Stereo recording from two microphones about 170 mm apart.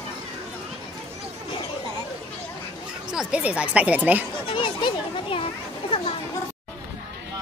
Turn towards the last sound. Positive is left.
turn(degrees=35)  # may be behind; listen again after turning